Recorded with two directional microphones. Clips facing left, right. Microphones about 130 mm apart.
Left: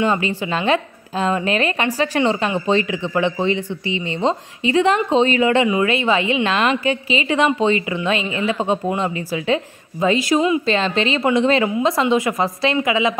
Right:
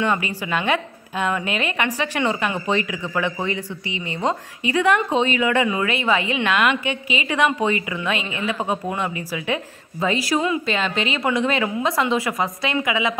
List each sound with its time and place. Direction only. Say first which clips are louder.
0.0 s a woman's voice: left 3 dB; 25° left (ahead or behind)